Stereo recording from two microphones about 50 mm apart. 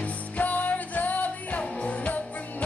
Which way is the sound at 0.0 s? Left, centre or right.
Left.